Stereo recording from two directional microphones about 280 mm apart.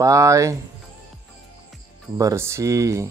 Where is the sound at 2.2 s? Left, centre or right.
Centre.